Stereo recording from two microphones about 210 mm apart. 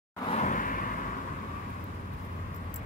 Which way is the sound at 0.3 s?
35° left (ahead or behind).